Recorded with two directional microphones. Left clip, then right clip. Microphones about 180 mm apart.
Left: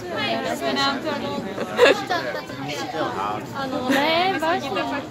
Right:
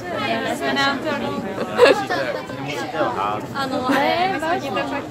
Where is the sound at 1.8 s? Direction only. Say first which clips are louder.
Right 2 dB; centre (ahead or behind).